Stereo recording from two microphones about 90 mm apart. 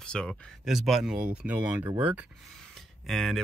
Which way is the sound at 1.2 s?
15° right (ahead or behind).